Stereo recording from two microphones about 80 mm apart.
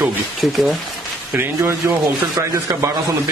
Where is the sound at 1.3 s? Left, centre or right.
Right.